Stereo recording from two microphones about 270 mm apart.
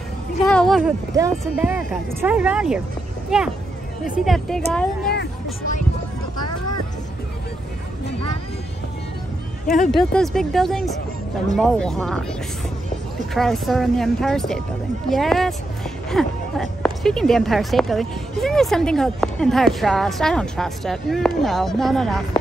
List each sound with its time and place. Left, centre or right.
0.5 s speech: centre
5.1 s a sound: left
9.8 s speech: centre
13.3 s speech: centre